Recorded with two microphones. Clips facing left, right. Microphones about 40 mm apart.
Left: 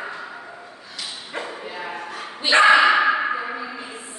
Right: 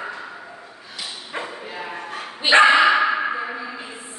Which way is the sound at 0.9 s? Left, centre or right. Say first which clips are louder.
Right 1 dB; centre.